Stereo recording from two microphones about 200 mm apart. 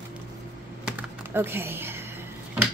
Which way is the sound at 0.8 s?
10° right (ahead or behind).